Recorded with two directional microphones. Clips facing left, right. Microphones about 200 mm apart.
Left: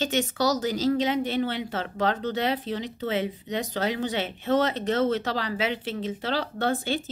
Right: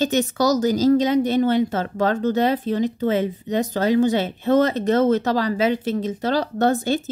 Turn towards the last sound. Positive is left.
turn(degrees=-45)  # may be behind; listen again after turning